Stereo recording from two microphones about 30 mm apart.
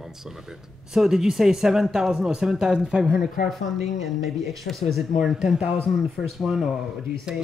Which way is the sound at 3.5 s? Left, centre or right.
Centre.